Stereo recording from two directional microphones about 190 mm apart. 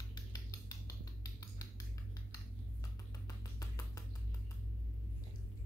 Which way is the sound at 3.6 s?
15° left (ahead or behind).